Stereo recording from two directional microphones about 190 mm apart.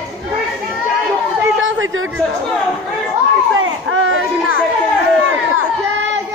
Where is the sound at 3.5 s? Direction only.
90° right.